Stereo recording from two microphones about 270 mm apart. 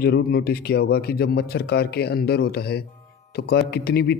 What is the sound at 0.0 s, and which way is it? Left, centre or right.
Speech, left.